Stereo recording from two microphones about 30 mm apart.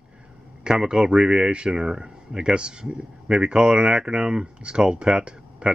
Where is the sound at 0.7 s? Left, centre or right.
Right.